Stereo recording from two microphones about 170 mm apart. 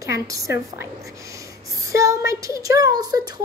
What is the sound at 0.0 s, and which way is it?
A child's voice, 20° right (ahead or behind).